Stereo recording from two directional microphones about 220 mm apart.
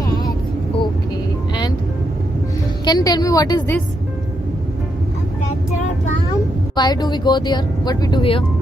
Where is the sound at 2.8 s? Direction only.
15° left (ahead or behind).